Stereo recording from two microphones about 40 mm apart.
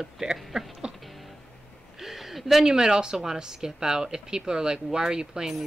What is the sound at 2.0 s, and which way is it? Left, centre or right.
Speech, centre.